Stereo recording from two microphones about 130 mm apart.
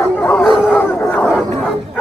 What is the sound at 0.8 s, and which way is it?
Crowd, 15° left (ahead or behind).